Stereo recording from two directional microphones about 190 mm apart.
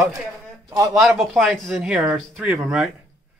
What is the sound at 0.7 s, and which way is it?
Speech, 15° right (ahead or behind).